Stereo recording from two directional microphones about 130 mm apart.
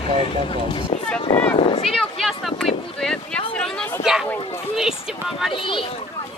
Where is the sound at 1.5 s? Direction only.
45° left (ahead or behind).